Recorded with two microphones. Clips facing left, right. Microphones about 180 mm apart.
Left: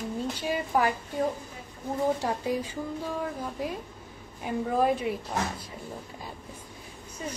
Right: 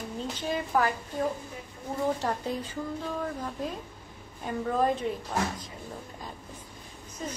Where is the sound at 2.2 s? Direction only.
10° left (ahead or behind).